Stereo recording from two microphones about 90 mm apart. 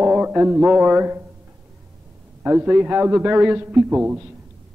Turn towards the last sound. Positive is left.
turn(degrees=-5)  # may be behind; listen again after turning